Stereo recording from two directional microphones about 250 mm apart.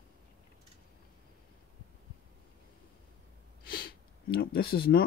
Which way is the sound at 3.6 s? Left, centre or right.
Left.